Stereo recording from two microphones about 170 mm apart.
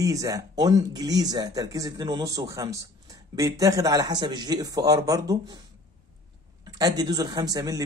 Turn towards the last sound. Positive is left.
turn(degrees=-20)  # may be behind; listen again after turning